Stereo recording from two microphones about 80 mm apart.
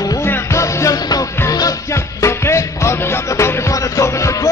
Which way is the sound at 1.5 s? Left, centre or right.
Left.